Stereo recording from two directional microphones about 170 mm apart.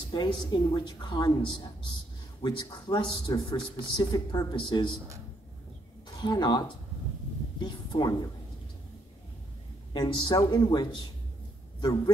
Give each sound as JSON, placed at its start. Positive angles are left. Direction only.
{"t": 0.1, "sound": "a man's voice", "side_deg": 25}
{"t": 6.2, "sound": "a man's voice", "side_deg": 25}
{"t": 7.6, "sound": "a man's voice", "side_deg": 25}
{"t": 9.9, "sound": "a man's voice", "side_deg": 30}